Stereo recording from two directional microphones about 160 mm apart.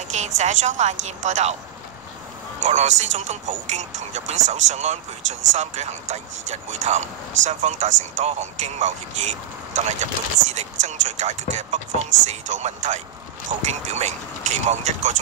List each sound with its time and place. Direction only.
0.2 s speech: 50° right (ahead or behind)
2.6 s speech: 50° right (ahead or behind)
13.5 s speech: 35° right (ahead or behind)
13.9 s speech: 45° right (ahead or behind)